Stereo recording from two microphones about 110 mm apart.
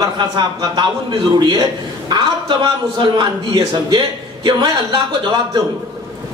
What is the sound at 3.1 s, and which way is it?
A man's voice, 40° right (ahead or behind).